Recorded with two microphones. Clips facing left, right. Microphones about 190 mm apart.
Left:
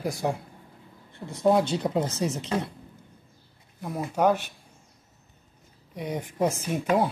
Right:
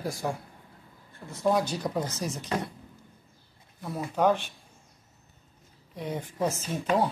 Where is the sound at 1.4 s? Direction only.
25° left (ahead or behind).